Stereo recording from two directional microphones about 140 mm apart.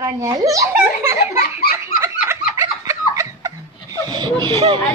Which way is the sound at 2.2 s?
20° right (ahead or behind).